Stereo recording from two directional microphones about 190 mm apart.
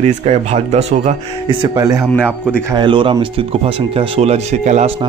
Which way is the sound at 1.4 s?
25° right (ahead or behind).